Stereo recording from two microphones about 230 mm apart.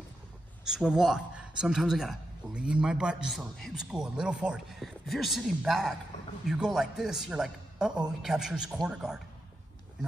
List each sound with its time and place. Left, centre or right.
0.7 s speech: centre